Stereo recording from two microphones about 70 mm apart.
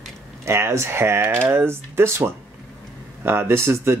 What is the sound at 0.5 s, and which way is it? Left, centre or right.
Speech, right.